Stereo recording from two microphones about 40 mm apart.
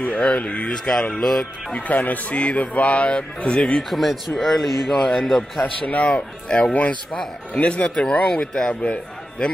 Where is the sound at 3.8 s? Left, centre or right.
Centre.